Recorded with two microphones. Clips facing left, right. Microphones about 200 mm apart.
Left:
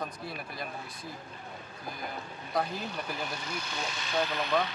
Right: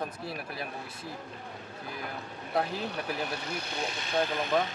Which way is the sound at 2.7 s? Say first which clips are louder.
Right 3 dB; 65° right (ahead or behind).